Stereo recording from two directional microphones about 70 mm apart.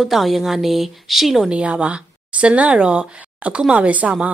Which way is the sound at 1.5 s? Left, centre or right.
Centre.